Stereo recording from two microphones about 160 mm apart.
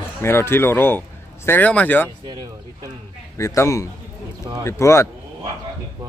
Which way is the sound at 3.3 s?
20° left (ahead or behind).